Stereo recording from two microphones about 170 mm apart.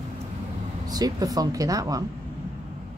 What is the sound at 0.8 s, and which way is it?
Speech, 20° right (ahead or behind).